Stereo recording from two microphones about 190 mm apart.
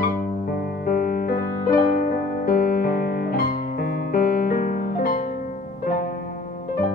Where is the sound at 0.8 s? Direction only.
50° left (ahead or behind).